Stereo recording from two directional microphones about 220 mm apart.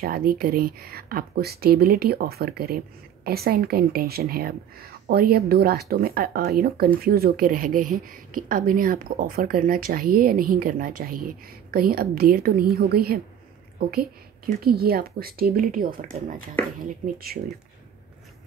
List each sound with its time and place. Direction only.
0.0 s a woman's voice: 40° right (ahead or behind)